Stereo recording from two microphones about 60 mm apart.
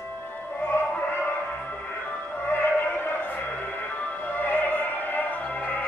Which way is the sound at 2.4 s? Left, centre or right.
Left.